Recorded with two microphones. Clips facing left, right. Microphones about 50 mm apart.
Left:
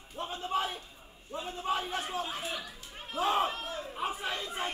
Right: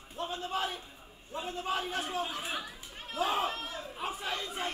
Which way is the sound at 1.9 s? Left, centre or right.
Centre.